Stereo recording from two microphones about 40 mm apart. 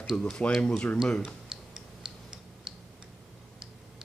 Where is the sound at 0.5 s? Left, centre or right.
Left.